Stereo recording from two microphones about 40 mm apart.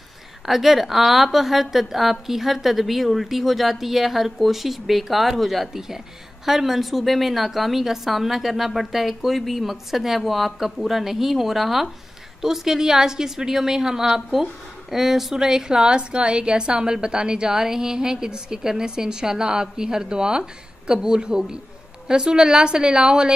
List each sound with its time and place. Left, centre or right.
0.5 s a woman's voice: centre